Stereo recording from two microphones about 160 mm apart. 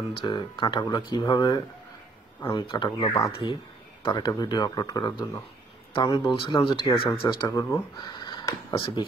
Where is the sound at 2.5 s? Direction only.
30° left (ahead or behind).